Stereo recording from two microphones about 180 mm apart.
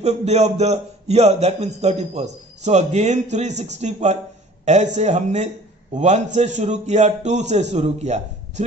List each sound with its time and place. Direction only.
0.0 s a man's voice: 35° right (ahead or behind)